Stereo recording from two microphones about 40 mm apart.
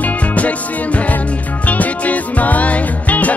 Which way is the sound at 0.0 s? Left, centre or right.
Left.